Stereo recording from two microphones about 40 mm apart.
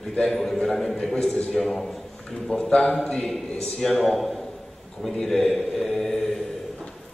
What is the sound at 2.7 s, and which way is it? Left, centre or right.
Speech, left.